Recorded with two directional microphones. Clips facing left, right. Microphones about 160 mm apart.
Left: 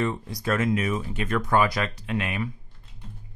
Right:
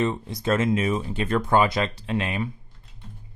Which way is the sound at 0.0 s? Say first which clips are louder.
Right 2 dB; 20° right (ahead or behind).